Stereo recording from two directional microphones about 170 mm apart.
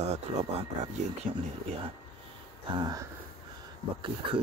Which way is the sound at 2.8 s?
20° right (ahead or behind).